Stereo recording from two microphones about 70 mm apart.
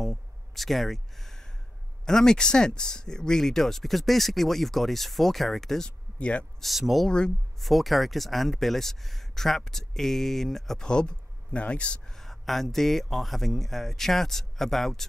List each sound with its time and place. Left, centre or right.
0.0 s a sound: centre
2.0 s speech: centre
6.6 s speech: centre
7.1 s speech: centre
7.6 s speech: centre
12.1 s speech: centre